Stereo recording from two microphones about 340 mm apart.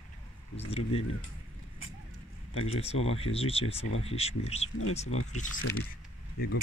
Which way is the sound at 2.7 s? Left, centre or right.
Centre.